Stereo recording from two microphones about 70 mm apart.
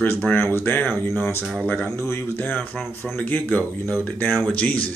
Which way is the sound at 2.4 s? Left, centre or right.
Left.